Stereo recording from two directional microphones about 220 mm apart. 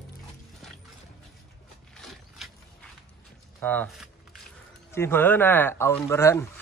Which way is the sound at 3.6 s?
5° left (ahead or behind).